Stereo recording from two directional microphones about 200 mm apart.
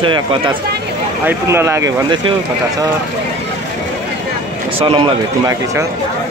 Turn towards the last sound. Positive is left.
turn(degrees=-25)  # may be behind; listen again after turning